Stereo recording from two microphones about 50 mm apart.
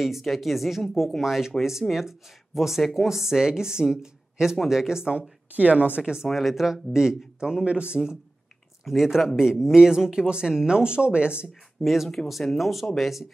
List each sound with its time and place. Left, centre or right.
0.0 s speech: centre
5.5 s a woman's voice: right
6.3 s a woman's voice: centre; by 8.0 s right
8.8 s speech: centre
11.8 s speech: centre